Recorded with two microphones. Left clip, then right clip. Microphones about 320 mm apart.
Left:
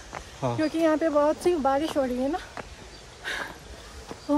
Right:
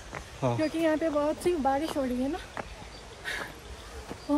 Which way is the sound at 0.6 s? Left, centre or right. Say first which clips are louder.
Left 5 dB; centre.